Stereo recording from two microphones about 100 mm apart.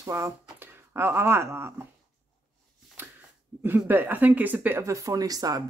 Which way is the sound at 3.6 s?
20° right (ahead or behind).